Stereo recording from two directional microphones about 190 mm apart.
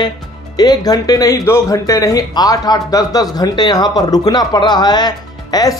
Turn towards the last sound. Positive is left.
turn(degrees=20)  # may be behind; listen again after turning